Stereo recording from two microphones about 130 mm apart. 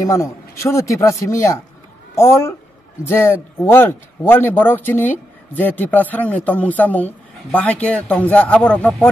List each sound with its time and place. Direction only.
0.0 s a man's voice: 25° left (ahead or behind)